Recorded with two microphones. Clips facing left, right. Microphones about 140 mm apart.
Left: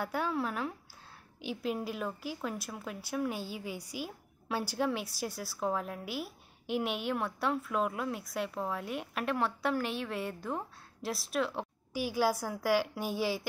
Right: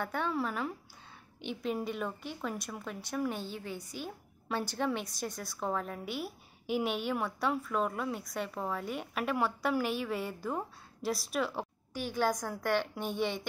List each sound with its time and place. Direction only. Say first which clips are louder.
0.0 s a woman's voice: even; 5° left (ahead or behind)
11.9 s a woman's voice: left 2 dB; 10° left (ahead or behind)